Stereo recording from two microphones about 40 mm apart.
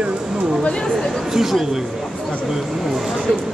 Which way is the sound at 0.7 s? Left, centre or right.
Centre.